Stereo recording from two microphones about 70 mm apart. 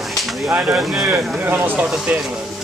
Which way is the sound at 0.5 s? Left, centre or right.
Right.